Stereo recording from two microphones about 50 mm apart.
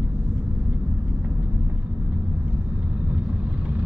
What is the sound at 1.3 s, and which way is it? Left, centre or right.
Vehicle, right.